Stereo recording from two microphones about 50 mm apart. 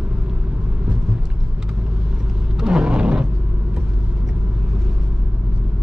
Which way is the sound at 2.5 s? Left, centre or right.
Centre.